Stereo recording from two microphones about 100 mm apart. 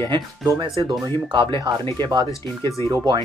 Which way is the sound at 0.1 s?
55° right (ahead or behind).